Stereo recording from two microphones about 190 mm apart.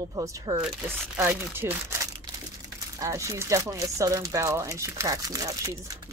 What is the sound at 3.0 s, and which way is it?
Speech, 15° right (ahead or behind).